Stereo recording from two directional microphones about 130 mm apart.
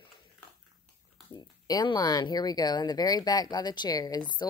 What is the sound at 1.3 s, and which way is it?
Speech, 30° left (ahead or behind).